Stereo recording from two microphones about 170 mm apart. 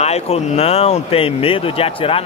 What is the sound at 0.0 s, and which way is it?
Speech, 40° left (ahead or behind).